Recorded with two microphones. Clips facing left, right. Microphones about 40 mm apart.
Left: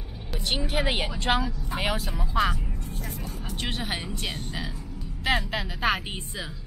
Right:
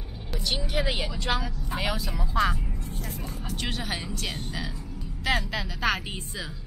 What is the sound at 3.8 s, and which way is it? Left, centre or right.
Speech, left.